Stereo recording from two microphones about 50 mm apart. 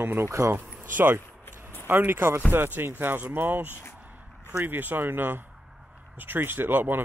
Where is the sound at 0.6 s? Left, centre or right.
Right.